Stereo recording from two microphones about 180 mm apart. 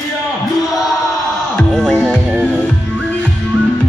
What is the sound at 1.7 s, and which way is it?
Music, centre (ahead or behind).